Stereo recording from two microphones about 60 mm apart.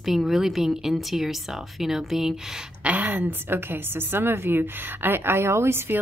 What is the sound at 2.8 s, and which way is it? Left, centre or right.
A woman's voice, right.